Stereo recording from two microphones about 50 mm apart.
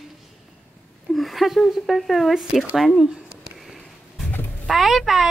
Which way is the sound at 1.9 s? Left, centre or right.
Centre.